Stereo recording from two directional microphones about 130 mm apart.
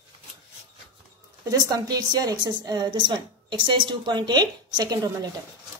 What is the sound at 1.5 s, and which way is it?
A woman's voice, 30° right (ahead or behind).